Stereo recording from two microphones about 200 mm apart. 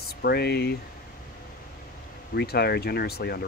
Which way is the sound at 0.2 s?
55° left (ahead or behind).